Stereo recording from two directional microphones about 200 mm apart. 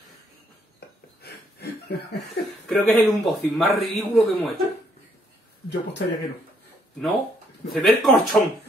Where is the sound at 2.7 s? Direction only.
Centre (ahead or behind).